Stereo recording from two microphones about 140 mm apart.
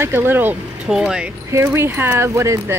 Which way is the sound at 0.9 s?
5° right (ahead or behind).